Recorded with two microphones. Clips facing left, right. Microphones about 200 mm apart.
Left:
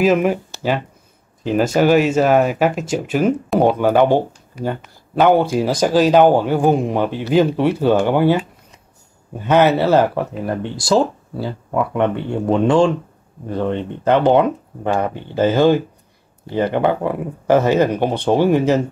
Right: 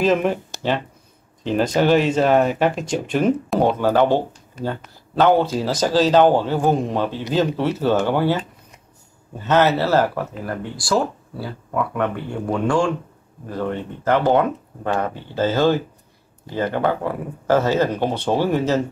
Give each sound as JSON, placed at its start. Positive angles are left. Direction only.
{"t": 0.0, "sound": "speech", "side_deg": 10}
{"t": 1.4, "sound": "speech", "side_deg": 10}